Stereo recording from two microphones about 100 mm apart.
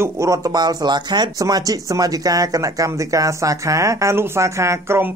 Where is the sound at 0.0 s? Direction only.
35° right (ahead or behind).